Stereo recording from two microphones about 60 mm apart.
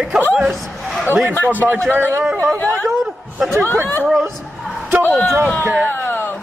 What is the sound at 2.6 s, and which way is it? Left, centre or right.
Speech, left.